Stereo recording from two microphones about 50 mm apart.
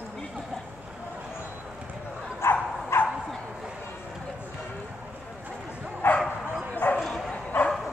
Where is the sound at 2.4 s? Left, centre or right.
Left.